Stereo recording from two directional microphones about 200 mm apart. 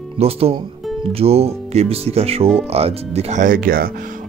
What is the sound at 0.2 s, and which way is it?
Speech, 30° right (ahead or behind).